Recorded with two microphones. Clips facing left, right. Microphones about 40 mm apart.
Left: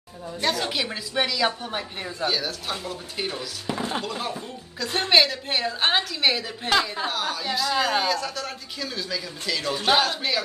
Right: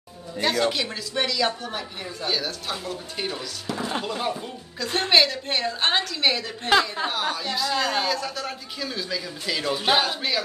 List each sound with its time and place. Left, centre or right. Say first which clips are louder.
0.4 s a woman's voice: right 3 dB; centre
2.2 s speech: left 1 dB; centre
3.6 s a woman's voice: left 1 dB; centre
4.0 s speech: right 2 dB; centre
6.8 s speech: right 1 dB; centre